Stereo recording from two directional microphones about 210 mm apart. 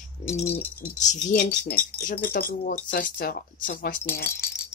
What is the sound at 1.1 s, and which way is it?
Speech, 40° left (ahead or behind).